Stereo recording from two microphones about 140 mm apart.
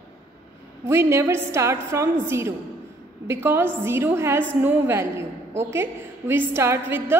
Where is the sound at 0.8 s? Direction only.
20° right (ahead or behind).